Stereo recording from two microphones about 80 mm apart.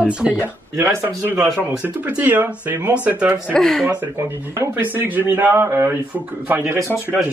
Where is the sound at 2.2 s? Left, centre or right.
Right.